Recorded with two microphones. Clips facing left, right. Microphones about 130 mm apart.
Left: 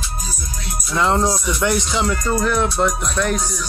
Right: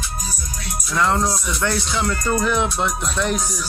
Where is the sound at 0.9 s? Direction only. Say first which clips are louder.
Left 2 dB; 25° left (ahead or behind).